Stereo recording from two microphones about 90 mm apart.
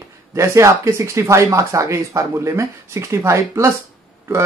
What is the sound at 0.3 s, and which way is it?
Speech, 35° right (ahead or behind).